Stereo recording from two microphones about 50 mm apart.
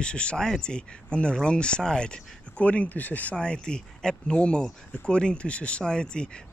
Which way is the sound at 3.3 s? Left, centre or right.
Centre.